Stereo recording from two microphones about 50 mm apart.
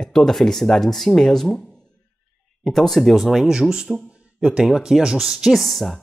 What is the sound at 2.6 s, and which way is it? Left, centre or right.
Speech, centre.